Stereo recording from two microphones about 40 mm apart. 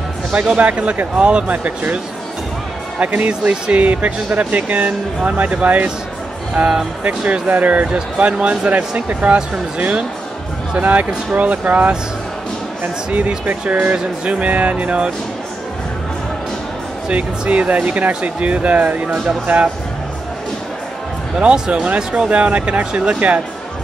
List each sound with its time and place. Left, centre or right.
0.3 s speech: right
3.0 s speech: right
6.6 s music: right
7.0 s speech: right
13.9 s music: right
14.5 s speech: right
17.1 s speech: right
21.4 s music: right
22.3 s speech: right